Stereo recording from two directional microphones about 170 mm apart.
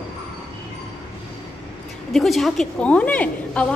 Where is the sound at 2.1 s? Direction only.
Centre (ahead or behind).